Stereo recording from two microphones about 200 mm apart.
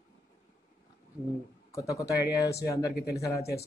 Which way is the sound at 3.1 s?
15° left (ahead or behind).